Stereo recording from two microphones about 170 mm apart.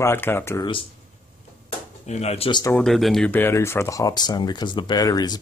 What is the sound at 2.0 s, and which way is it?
Speech, 40° left (ahead or behind).